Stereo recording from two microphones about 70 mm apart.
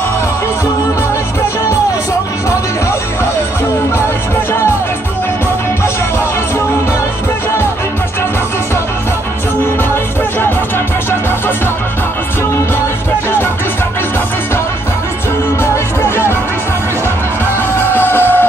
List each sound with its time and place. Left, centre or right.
17.9 s music: left